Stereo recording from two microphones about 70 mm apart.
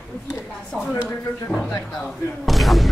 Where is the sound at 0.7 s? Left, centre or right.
Centre.